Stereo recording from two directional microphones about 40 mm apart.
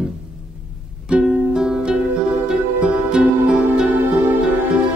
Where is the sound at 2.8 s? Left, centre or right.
Right.